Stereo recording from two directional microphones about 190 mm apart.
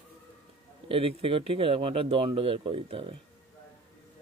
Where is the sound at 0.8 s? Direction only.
30° right (ahead or behind).